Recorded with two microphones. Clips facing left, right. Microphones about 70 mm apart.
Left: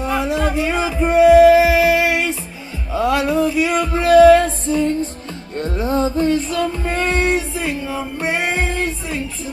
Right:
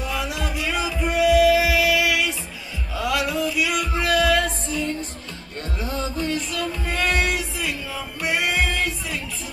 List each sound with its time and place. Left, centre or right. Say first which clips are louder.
0.0 s music: left 8 dB; left